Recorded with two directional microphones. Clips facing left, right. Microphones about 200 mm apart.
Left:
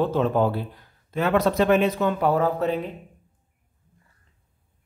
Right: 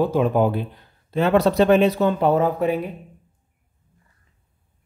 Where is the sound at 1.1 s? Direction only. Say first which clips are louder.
Right 4 dB; 30° right (ahead or behind); by 2.9 s 10° right (ahead or behind).